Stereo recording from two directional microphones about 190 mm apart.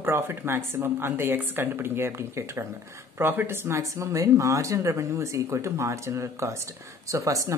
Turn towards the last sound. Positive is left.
turn(degrees=-15)  # may be behind; listen again after turning